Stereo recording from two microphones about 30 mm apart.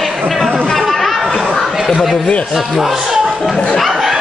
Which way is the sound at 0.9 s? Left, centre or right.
Centre.